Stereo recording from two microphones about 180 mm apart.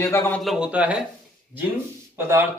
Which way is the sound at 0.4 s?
5° right (ahead or behind).